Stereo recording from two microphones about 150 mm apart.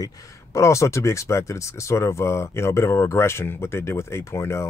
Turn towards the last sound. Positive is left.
turn(degrees=20)  # may be behind; listen again after turning